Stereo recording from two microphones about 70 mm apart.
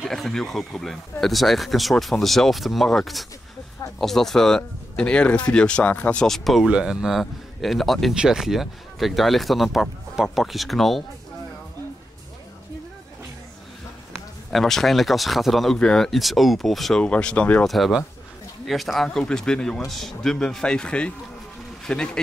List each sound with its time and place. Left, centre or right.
0.0 s speech: centre; by 6.2 s left
6.2 s speech: centre
8.1 s speech: centre
14.1 s speech: centre
17.0 s speech: centre
17.6 s speech: centre